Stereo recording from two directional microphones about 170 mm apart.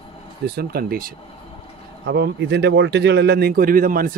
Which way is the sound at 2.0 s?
85° right.